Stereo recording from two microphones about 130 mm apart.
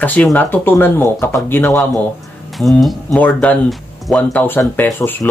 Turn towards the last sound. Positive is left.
turn(degrees=15)  # may be behind; listen again after turning